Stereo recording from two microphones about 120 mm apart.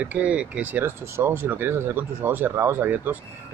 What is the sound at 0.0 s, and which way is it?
Speech, 10° right (ahead or behind).